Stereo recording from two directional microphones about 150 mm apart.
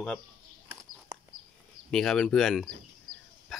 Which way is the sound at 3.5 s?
Centre (ahead or behind).